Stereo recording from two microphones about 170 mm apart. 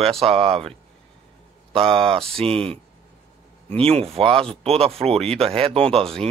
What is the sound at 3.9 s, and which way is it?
Speech, 35° right (ahead or behind).